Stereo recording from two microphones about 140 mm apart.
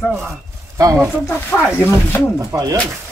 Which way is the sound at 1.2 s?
15° left (ahead or behind).